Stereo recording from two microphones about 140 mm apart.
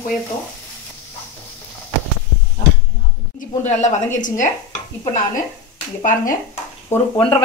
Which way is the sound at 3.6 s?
55° left (ahead or behind).